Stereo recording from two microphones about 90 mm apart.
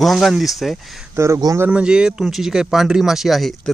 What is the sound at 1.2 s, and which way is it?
Speech, 30° right (ahead or behind).